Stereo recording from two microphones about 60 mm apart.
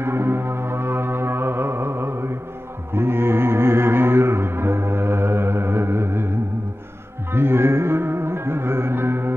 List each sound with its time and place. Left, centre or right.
0.0 s music: right
2.9 s mantra: right
7.3 s music: right